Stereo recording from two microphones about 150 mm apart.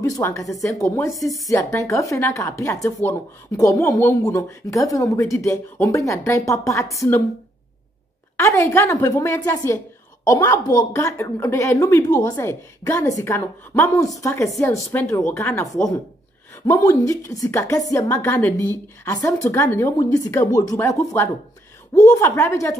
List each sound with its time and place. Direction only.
0.0 s speech: 20° left (ahead or behind)
8.4 s speech: 20° left (ahead or behind)